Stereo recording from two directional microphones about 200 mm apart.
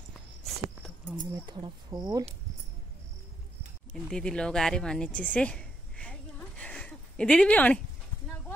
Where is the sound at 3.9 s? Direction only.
5° left (ahead or behind).